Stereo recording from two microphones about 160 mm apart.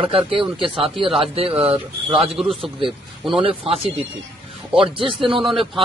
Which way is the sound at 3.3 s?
35° right (ahead or behind).